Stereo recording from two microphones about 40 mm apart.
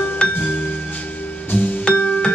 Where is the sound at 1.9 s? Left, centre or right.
Left.